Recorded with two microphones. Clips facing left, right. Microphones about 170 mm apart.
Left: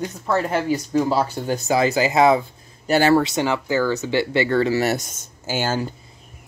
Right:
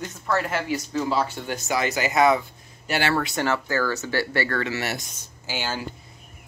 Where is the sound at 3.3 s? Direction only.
15° left (ahead or behind).